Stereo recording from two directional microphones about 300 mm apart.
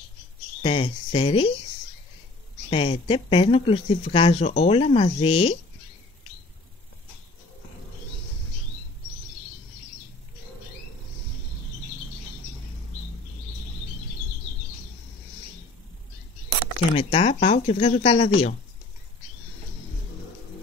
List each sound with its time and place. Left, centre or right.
0.6 s speech: centre
2.7 s speech: centre
16.9 s speech: centre